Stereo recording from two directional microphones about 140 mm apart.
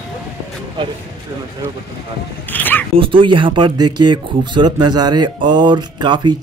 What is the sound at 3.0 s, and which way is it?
Speech, 40° right (ahead or behind).